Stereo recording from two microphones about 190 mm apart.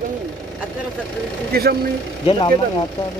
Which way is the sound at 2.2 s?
25° left (ahead or behind).